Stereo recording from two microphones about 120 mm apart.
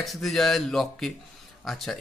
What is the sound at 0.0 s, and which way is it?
Speech, centre (ahead or behind).